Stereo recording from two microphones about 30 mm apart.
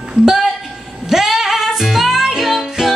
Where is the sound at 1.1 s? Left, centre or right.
Centre.